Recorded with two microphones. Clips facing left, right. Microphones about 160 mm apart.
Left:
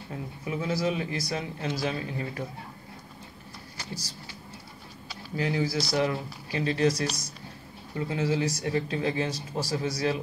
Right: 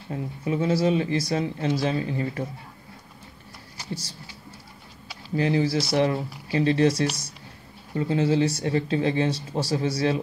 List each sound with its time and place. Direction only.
0.5 s speech: 30° right (ahead or behind)
5.3 s speech: 25° right (ahead or behind)